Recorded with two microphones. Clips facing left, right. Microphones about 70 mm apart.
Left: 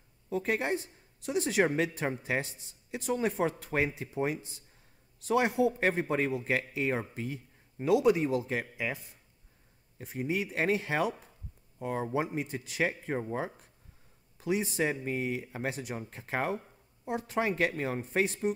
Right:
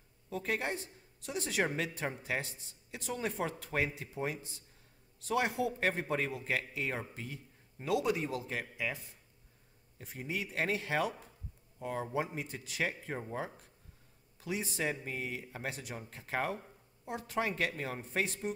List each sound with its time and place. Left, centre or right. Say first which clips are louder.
0.3 s a man's voice: left 5 dB; left
9.9 s a man's voice: left 7 dB; left